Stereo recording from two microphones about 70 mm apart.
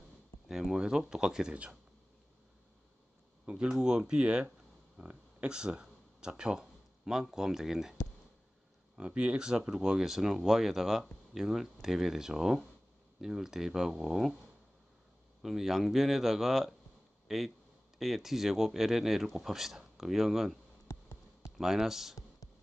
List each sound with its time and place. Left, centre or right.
0.5 s speech: centre
3.6 s speech: centre
8.9 s speech: centre
15.4 s speech: centre
20.9 s music: left
21.5 s speech: centre